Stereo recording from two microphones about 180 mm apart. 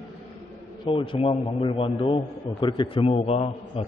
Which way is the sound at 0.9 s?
30° left (ahead or behind).